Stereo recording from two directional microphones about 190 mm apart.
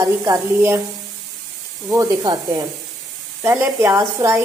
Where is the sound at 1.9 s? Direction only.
20° right (ahead or behind).